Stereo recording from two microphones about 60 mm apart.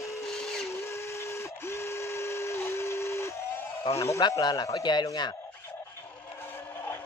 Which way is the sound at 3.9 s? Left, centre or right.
Left.